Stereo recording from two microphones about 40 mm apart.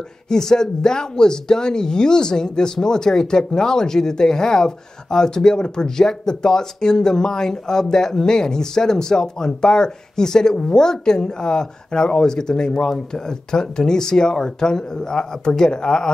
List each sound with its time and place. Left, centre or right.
0.3 s speech: centre